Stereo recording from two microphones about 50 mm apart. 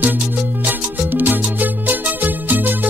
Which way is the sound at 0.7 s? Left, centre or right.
Right.